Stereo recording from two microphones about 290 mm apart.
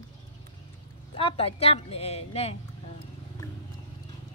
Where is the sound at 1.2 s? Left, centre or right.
Centre.